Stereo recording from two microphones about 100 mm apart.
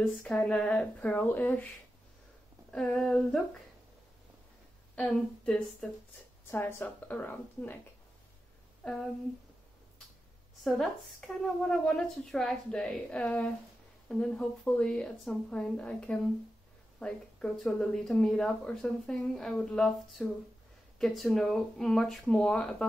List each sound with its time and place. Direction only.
0.0 s speech: 10° left (ahead or behind)
2.7 s speech: 5° left (ahead or behind)
4.9 s speech: 5° left (ahead or behind)
6.5 s a woman's voice: 20° left (ahead or behind)
8.8 s a sound: 10° left (ahead or behind)
10.6 s speech: centre (ahead or behind)